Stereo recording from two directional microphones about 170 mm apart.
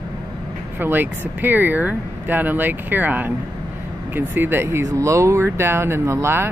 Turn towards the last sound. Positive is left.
turn(degrees=-15)  # may be behind; listen again after turning